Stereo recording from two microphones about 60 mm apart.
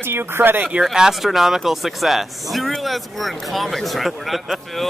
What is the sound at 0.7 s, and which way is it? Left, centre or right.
Speech, centre.